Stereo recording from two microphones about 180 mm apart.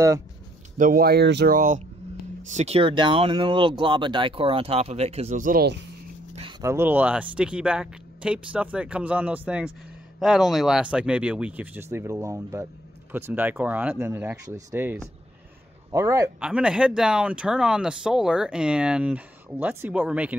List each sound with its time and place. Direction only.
0.7 s speech: 50° right (ahead or behind); by 1.5 s 70° right (ahead or behind)
1.5 s speech: 45° right (ahead or behind)
2.5 s speech: 35° right (ahead or behind)
6.6 s speech: 15° right (ahead or behind)
16.3 s speech: 5° right (ahead or behind)